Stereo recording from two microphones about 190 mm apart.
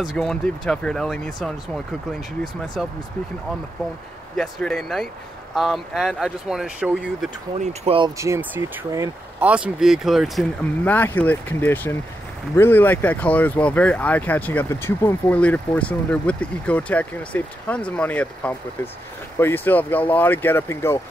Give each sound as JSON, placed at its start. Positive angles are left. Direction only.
{"t": 0.0, "sound": "speech", "side_deg": 0}
{"t": 4.4, "sound": "speech", "side_deg": 5}
{"t": 7.6, "sound": "speech", "side_deg": -30}
{"t": 8.2, "sound": "speech", "side_deg": -15}
{"t": 9.5, "sound": "speech", "side_deg": -5}